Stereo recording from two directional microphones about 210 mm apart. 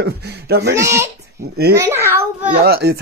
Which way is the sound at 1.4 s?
50° right (ahead or behind).